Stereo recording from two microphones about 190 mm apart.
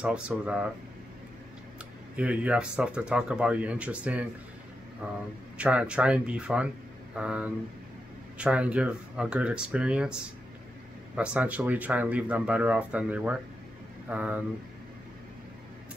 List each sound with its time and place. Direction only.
0.0 s speech: 5° right (ahead or behind)
2.1 s speech: 5° right (ahead or behind)